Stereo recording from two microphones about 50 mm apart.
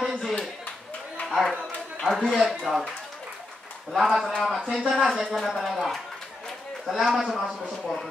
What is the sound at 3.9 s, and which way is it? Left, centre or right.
A man's voice, centre.